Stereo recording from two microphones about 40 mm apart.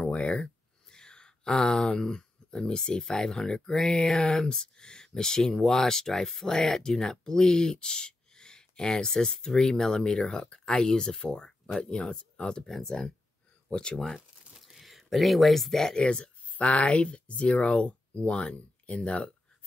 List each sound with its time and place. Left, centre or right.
0.0 s a sound: left
2.0 s speech: centre
14.6 s speech: centre
16.0 s speech: left